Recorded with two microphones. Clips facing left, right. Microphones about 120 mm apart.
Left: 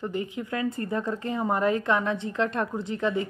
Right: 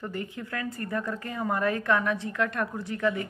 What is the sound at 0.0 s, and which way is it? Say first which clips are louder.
Speech: left 4 dB; 20° left (ahead or behind).